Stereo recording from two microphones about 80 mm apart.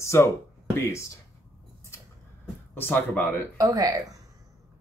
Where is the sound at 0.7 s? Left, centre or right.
Left.